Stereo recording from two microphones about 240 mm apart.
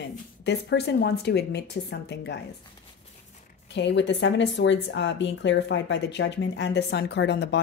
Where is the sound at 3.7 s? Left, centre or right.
Left.